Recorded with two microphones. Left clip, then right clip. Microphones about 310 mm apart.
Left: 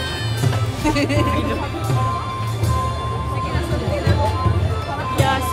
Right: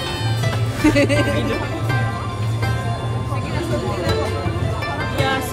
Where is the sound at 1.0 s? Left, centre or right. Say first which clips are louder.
Right 3 dB; right.